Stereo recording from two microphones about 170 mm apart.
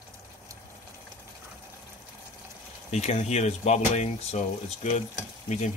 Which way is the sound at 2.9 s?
40° left (ahead or behind).